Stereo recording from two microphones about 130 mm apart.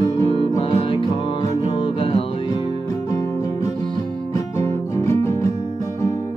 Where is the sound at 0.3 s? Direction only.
45° left (ahead or behind).